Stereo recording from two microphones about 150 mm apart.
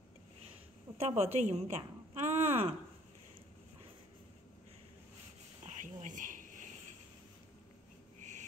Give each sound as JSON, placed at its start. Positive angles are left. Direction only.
{"t": 0.9, "sound": "a woman's voice", "side_deg": -45}
{"t": 5.7, "sound": "a sound", "side_deg": -55}
{"t": 8.2, "sound": "insect", "side_deg": -55}